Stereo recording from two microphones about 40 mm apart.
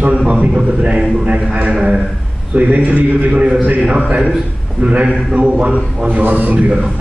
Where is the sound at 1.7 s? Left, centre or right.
Right.